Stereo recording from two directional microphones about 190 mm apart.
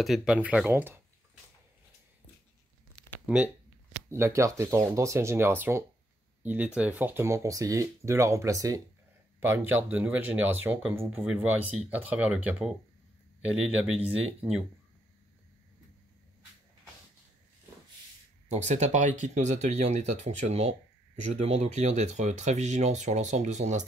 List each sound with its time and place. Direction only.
0.0 s speech: centre (ahead or behind)
3.3 s speech: 5° right (ahead or behind)
18.5 s speech: 35° right (ahead or behind)